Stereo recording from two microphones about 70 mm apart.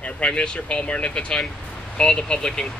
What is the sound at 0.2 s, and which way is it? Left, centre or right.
Speech, centre.